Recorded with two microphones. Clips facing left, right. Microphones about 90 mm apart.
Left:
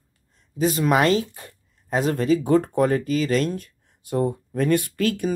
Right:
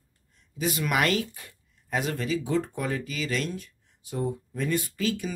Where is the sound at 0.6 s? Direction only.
35° left (ahead or behind).